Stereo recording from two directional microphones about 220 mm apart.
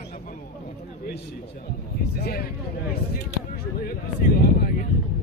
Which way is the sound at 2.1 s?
45° left (ahead or behind).